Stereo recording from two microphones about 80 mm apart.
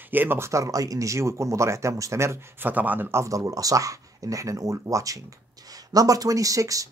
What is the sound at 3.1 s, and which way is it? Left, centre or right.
Speech, right.